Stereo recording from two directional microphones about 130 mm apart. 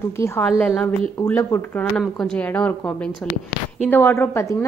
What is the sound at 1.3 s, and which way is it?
Speech, 20° left (ahead or behind).